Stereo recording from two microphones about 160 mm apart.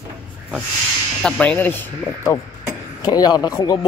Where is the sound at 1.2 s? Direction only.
5° left (ahead or behind).